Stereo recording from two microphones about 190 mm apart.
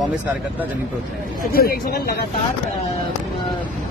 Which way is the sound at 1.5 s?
55° left (ahead or behind).